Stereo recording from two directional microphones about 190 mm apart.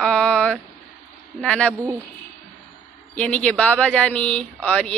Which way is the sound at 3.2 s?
5° left (ahead or behind).